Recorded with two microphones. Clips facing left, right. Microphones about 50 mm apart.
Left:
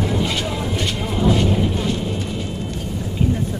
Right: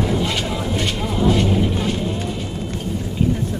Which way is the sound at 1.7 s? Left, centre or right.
Centre.